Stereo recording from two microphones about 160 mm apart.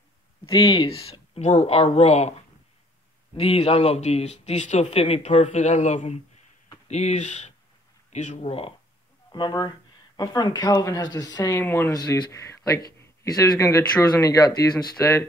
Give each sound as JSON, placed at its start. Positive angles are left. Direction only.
{"t": 0.5, "sound": "speech", "side_deg": 30}
{"t": 3.3, "sound": "speech", "side_deg": 40}
{"t": 9.3, "sound": "speech", "side_deg": 25}